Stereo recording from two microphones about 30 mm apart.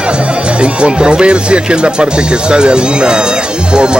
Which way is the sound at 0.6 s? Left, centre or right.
Right.